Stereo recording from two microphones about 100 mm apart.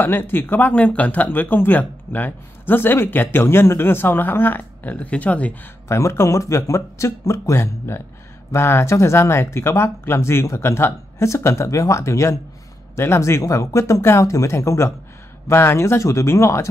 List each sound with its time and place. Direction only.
0.0 s speech: 20° left (ahead or behind)
5.9 s speech: 30° left (ahead or behind)